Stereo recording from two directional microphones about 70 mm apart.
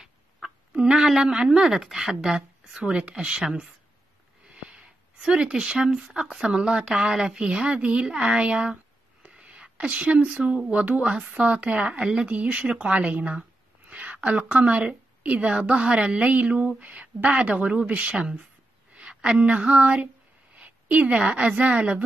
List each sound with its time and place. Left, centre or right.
0.0 s speech: centre
18.9 s a sound: centre
20.5 s a woman's voice: centre